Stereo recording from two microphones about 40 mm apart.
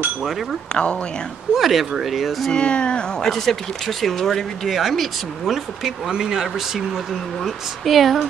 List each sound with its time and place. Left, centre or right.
1.5 s speech: centre
2.5 s a sound: left
3.2 s speech: centre
4.6 s speech: centre
5.9 s speech: centre